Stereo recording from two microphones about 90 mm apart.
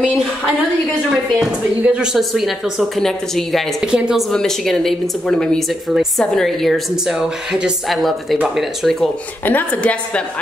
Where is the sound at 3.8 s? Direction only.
5° right (ahead or behind).